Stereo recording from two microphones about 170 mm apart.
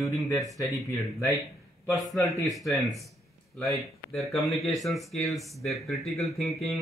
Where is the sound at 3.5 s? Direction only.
15° left (ahead or behind).